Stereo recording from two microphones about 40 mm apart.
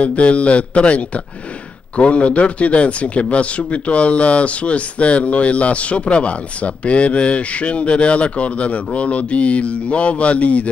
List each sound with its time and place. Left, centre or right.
0.0 s speech: left